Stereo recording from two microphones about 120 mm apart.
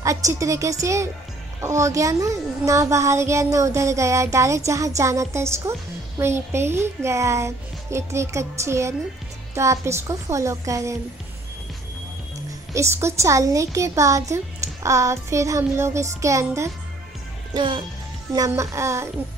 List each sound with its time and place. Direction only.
0.0 s a woman's voice: 25° right (ahead or behind)
12.7 s a woman's voice: 25° right (ahead or behind)
17.6 s speech: 40° right (ahead or behind)
18.6 s a woman's voice: 25° right (ahead or behind)